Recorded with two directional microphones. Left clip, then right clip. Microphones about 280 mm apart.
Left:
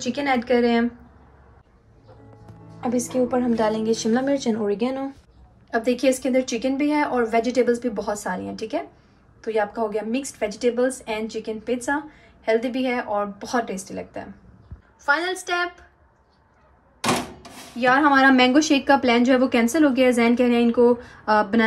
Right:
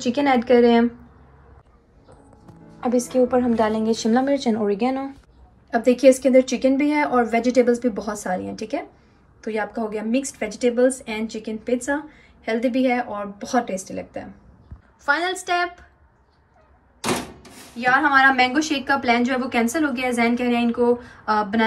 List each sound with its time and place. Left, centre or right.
0.0 s a woman's voice: centre
2.8 s a woman's voice: centre
17.0 s typewriter: centre
17.9 s a woman's voice: left